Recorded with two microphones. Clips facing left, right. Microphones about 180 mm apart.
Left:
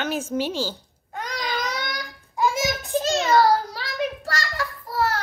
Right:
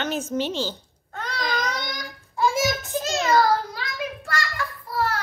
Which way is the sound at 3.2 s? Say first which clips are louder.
Even; 35° left (ahead or behind).